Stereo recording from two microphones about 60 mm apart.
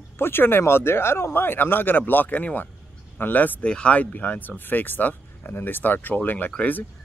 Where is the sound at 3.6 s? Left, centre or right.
Centre.